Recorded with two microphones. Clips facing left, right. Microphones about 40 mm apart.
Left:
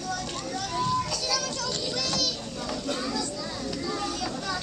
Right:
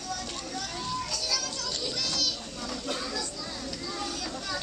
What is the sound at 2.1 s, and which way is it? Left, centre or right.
Children playing, centre.